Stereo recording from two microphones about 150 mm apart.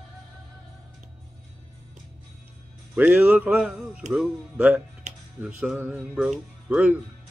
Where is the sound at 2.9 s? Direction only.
10° right (ahead or behind).